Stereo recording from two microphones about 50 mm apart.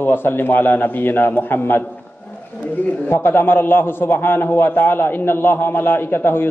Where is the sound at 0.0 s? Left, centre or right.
Left.